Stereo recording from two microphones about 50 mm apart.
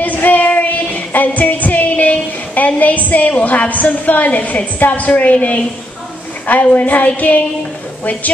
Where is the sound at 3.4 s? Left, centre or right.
Left.